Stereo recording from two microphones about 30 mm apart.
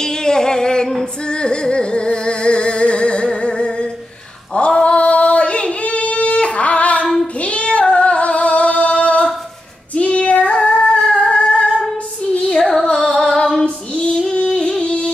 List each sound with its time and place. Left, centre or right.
0.0 s music: left
3.3 s a sound: left
4.6 s female singing: left
7.3 s child singing: left
7.9 s a sound: left
9.9 s child singing: left
10.6 s singing: left
11.0 s humming: left
12.3 s female singing: left
12.9 s singing: centre
13.3 s female singing: centre
14.4 s music: left